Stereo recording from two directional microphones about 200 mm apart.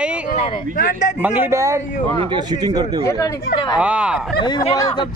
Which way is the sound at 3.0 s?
20° left (ahead or behind).